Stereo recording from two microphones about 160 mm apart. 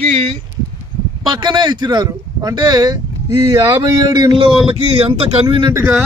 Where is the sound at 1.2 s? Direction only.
25° right (ahead or behind).